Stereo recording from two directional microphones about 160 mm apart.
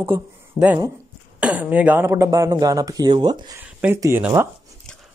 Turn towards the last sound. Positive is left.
turn(degrees=-15)  # may be behind; listen again after turning